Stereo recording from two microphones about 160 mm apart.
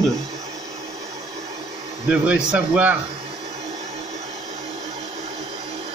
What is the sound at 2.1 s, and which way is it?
Speech, 5° right (ahead or behind).